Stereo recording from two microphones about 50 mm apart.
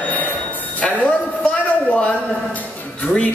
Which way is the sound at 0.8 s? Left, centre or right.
Centre.